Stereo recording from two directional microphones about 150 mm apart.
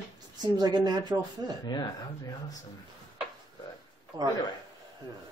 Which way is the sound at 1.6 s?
30° left (ahead or behind).